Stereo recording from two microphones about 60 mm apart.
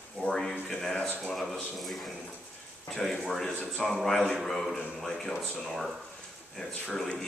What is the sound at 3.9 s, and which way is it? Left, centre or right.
Speech, centre.